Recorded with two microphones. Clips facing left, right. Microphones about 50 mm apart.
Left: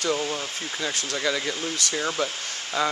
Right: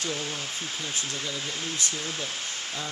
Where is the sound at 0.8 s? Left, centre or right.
Left.